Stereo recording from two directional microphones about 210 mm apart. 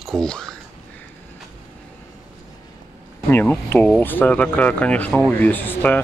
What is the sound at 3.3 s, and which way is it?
Speech, 10° left (ahead or behind).